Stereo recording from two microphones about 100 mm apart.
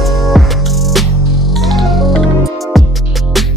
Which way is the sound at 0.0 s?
Centre (ahead or behind).